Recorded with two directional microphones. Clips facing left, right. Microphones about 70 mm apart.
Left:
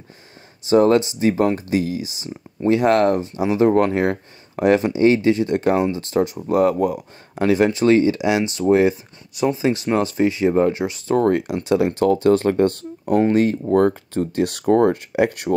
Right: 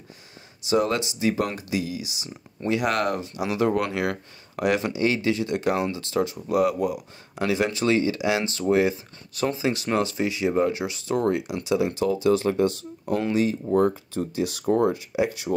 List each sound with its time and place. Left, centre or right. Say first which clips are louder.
0.7 s speech: left 8 dB; left
13.7 s speech: left 5 dB; left